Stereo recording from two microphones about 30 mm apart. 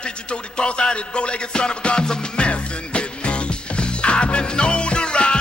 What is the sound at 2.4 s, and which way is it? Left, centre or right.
Music, left.